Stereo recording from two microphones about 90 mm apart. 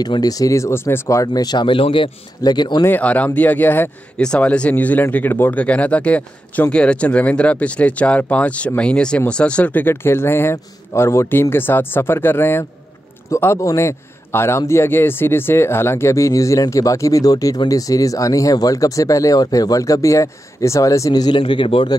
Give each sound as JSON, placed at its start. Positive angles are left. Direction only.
{"t": 0.0, "sound": "speech", "side_deg": 45}
{"t": 2.4, "sound": "speech", "side_deg": 55}
{"t": 3.0, "sound": "a man's voice", "side_deg": 15}
{"t": 21.4, "sound": "a man's voice", "side_deg": 70}